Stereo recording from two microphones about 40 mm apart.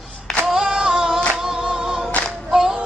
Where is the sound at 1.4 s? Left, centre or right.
Centre.